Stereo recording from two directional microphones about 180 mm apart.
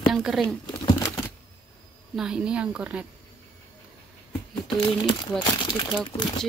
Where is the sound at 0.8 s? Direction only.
20° left (ahead or behind).